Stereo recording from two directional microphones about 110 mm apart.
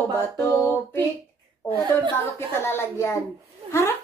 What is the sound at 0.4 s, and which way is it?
Speech, 20° left (ahead or behind).